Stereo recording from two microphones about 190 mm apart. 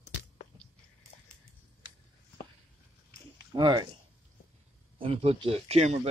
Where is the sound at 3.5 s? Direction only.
25° right (ahead or behind).